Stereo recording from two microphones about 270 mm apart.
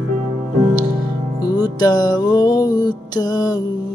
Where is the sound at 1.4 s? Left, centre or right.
Centre.